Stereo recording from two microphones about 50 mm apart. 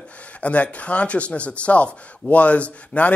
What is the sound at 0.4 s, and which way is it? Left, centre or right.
Speech, left.